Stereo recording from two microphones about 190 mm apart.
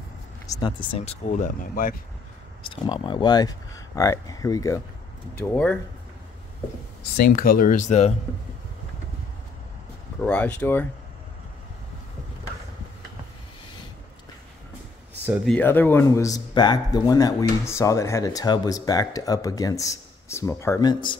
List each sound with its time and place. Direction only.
0.5 s speech: 20° left (ahead or behind); by 2.0 s 45° left (ahead or behind)
2.6 s speech: 25° left (ahead or behind)
5.4 s speech: 10° left (ahead or behind)
7.0 s speech: 50° left (ahead or behind)
10.2 s speech: 5° left (ahead or behind)
15.2 s speech: 5° right (ahead or behind)
15.5 s speech: 10° left (ahead or behind)